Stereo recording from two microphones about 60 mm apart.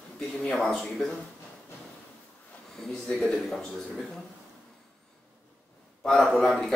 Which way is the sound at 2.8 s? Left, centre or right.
Centre.